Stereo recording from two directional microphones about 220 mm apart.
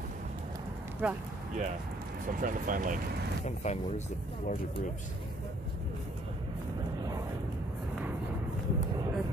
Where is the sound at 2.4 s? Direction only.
40° right (ahead or behind).